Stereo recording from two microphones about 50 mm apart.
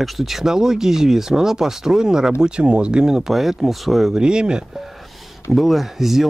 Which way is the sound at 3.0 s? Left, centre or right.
Centre.